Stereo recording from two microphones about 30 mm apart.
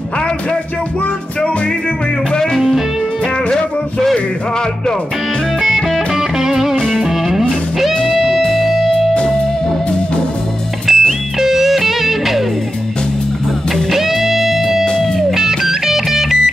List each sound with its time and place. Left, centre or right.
5.6 s music: centre
10.9 s music: centre
13.9 s music: centre